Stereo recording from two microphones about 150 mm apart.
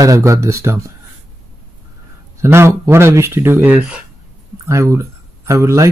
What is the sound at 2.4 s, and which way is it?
Speech, 20° right (ahead or behind).